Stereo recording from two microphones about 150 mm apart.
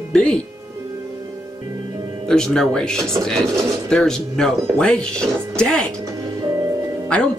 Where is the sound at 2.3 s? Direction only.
5° left (ahead or behind).